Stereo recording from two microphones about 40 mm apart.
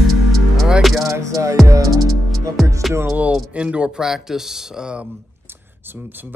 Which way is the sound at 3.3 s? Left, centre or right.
Right.